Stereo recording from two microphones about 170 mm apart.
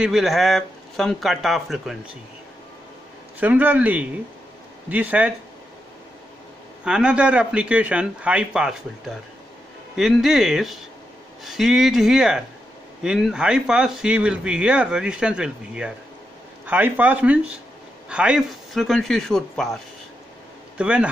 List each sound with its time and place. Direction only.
0.0 s speech: centre (ahead or behind)
3.3 s speech: 10° right (ahead or behind)
6.8 s speech: 5° right (ahead or behind)